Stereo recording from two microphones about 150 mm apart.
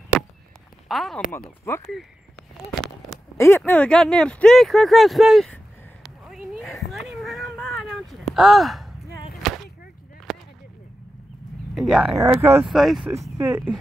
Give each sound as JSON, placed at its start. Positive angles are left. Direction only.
{"t": 0.8, "sound": "speech", "side_deg": 0}
{"t": 3.3, "sound": "speech", "side_deg": 15}
{"t": 6.2, "sound": "a sound", "side_deg": 0}
{"t": 9.4, "sound": "whip", "side_deg": 0}
{"t": 10.3, "sound": "a sound", "side_deg": 0}
{"t": 11.7, "sound": "speech", "side_deg": -5}
{"t": 12.4, "sound": "speech", "side_deg": -15}
{"t": 12.6, "sound": "speech", "side_deg": 0}
{"t": 13.4, "sound": "speech", "side_deg": -15}